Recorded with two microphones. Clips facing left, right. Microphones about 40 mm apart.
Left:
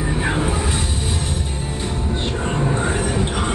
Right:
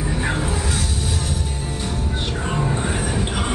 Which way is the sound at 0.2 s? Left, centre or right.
Centre.